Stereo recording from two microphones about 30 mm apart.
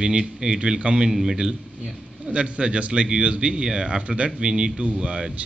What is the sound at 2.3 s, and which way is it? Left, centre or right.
A man's voice, right.